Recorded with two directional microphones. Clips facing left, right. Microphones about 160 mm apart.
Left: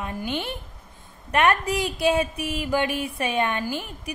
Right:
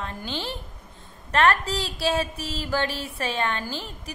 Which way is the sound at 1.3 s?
15° left (ahead or behind).